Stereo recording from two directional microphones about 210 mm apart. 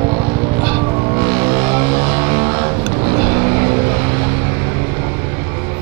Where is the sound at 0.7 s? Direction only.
25° right (ahead or behind).